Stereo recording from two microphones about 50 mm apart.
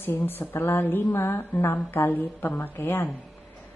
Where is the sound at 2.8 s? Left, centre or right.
Left.